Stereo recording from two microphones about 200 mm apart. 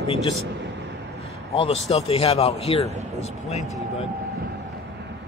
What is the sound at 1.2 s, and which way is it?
A man's voice, 30° left (ahead or behind).